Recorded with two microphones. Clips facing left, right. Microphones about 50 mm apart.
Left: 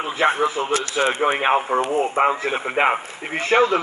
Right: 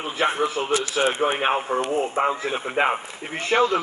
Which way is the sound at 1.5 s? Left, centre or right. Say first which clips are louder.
Left 4 dB; left.